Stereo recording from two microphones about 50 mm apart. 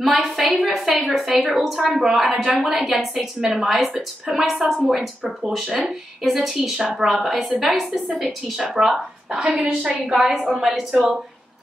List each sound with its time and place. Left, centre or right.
0.0 s a woman's voice: centre
9.4 s a woman's voice: centre